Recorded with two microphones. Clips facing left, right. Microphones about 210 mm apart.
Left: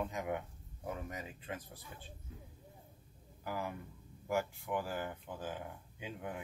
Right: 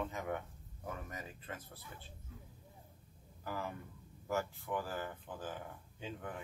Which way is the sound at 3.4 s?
10° left (ahead or behind).